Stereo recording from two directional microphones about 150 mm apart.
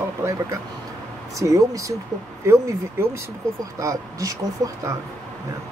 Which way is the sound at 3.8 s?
20° right (ahead or behind).